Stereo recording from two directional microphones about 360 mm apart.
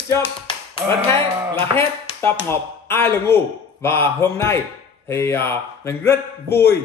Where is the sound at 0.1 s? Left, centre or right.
Centre.